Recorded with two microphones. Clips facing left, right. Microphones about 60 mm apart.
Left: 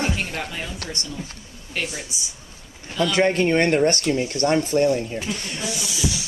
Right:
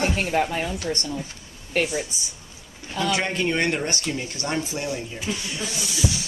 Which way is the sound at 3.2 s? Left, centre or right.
Left.